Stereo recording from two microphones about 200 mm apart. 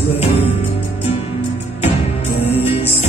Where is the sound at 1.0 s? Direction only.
30° left (ahead or behind).